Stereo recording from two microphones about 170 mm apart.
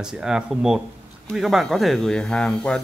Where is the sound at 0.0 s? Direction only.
5° right (ahead or behind).